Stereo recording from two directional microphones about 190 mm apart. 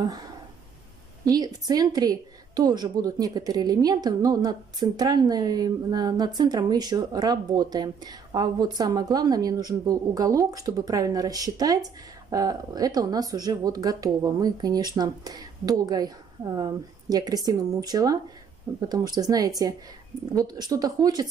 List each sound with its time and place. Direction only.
1.2 s a woman's voice: 20° right (ahead or behind)